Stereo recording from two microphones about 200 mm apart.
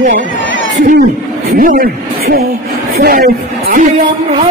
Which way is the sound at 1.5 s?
45° right (ahead or behind).